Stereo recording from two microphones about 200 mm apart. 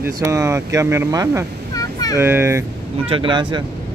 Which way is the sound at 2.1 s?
10° right (ahead or behind).